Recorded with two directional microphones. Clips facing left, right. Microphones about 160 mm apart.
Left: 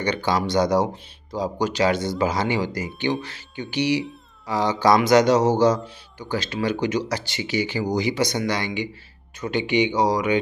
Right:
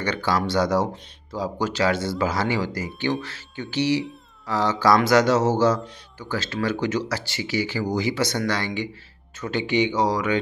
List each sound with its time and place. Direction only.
0.0 s speech: 20° left (ahead or behind)